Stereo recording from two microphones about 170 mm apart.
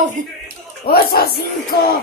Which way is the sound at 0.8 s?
65° left (ahead or behind).